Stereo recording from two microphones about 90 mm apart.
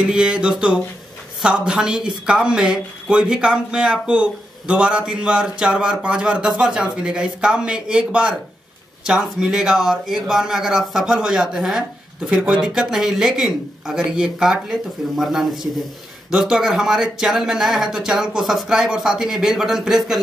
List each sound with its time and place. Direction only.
0.0 s speech: 10° right (ahead or behind)